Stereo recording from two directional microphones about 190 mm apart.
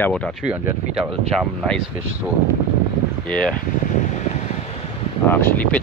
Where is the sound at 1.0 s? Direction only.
5° left (ahead or behind).